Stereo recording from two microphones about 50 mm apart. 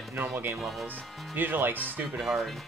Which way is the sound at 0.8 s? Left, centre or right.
Right.